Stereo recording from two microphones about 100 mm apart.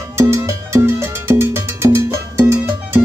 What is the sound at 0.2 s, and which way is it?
Music, 30° right (ahead or behind).